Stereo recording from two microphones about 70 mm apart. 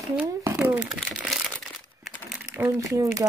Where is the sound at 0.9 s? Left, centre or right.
Centre.